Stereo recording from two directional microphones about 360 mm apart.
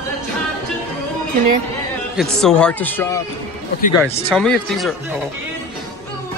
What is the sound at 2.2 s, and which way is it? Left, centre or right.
Speech, centre.